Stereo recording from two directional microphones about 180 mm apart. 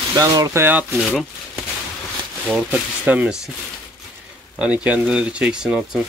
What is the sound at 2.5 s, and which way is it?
Speech, 5° right (ahead or behind).